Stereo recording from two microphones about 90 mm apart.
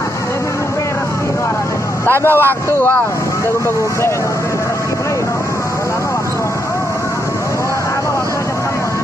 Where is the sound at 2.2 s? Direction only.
25° left (ahead or behind).